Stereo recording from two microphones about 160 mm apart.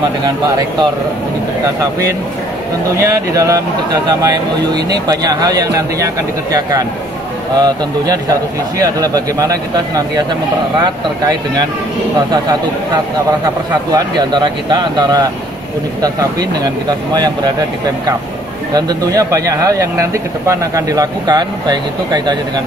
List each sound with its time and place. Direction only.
3.0 s speech: 20° right (ahead or behind)
12.3 s speech: 25° right (ahead or behind)
18.7 s speech: 25° right (ahead or behind)